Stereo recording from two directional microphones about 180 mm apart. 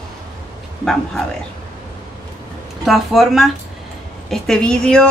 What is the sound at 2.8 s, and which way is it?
Speech, centre (ahead or behind).